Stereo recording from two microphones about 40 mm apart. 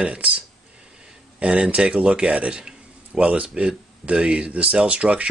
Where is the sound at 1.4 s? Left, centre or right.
Right.